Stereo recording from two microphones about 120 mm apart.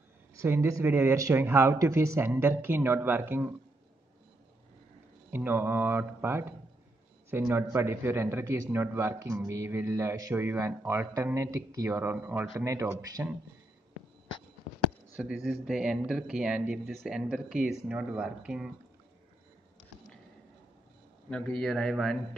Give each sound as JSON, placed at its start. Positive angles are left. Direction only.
{"t": 0.4, "sound": "a man's voice", "side_deg": -25}
{"t": 5.3, "sound": "a man's voice", "side_deg": -20}
{"t": 15.1, "sound": "speech", "side_deg": -5}
{"t": 21.3, "sound": "a man's voice", "side_deg": 5}